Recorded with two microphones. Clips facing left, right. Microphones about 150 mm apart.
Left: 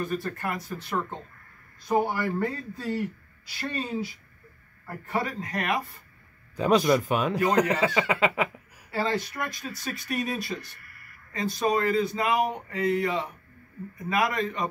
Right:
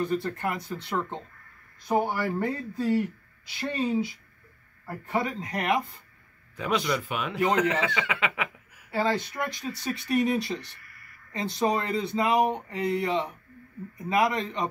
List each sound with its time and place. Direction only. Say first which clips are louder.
0.0 s speech: right 2 dB; 20° right (ahead or behind)
6.5 s speech: left 6 dB; 35° left (ahead or behind)
8.9 s speech: right 1 dB; 25° right (ahead or behind)